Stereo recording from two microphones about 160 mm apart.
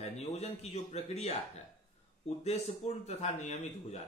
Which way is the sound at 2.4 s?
40° left (ahead or behind).